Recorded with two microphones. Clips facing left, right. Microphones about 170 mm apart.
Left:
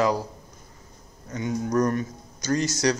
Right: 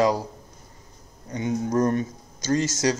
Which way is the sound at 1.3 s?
25° right (ahead or behind).